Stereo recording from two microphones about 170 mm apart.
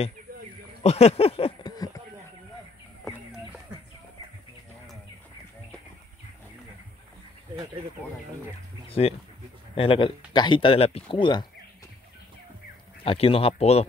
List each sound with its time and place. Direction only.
0.8 s speech: 40° left (ahead or behind)
8.8 s speech: 35° left (ahead or behind)
13.0 s speech: 35° left (ahead or behind)